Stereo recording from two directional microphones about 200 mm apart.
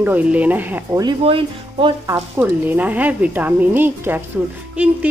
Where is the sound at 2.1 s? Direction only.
10° right (ahead or behind).